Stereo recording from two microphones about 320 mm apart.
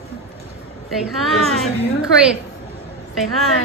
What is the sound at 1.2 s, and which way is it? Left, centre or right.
Speech, centre.